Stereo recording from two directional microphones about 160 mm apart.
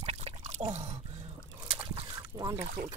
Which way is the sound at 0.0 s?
45° right (ahead or behind).